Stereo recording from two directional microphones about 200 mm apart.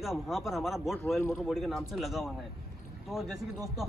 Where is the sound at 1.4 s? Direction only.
Centre (ahead or behind).